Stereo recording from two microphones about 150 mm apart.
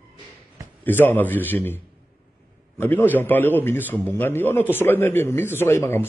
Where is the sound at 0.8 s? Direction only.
15° left (ahead or behind).